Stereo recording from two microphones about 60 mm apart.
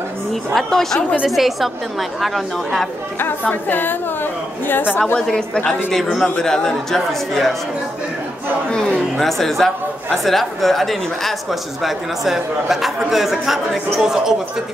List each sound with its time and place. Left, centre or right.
0.6 s speech: centre
1.2 s a man's voice: centre
3.4 s a woman's voice: left
5.2 s a man's voice: centre
8.6 s a man's voice: centre